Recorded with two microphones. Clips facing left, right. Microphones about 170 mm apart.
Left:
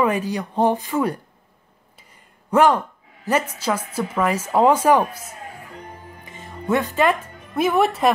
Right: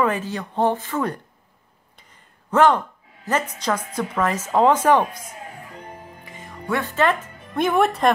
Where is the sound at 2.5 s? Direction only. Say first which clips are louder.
Left 1 dB; 10° left (ahead or behind).